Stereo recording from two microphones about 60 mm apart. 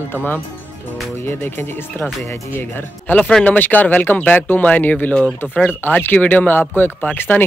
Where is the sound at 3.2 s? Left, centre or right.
Centre.